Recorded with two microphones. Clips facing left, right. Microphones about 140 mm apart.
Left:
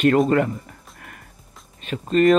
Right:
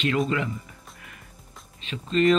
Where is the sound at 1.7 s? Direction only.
50° left (ahead or behind).